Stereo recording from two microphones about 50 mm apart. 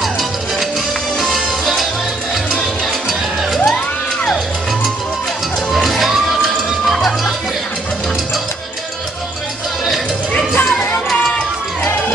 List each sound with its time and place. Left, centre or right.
0.0 s music: centre
5.7 s music: centre
10.5 s a sound: left